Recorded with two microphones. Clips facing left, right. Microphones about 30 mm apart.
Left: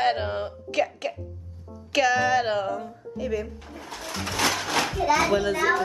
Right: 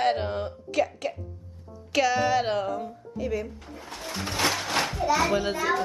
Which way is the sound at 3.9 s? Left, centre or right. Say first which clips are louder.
Left 1 dB; centre.